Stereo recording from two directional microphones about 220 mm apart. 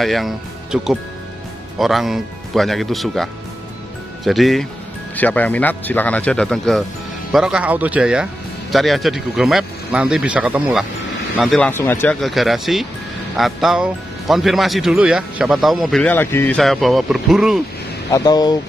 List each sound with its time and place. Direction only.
0.0 s speech: centre (ahead or behind)
18.1 s speech: 15° left (ahead or behind)